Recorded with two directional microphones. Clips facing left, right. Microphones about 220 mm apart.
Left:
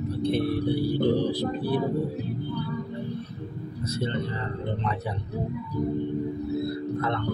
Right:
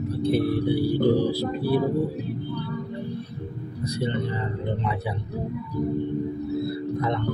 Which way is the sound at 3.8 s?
15° right (ahead or behind).